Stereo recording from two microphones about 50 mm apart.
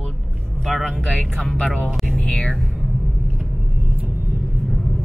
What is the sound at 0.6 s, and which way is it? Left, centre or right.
Music, centre.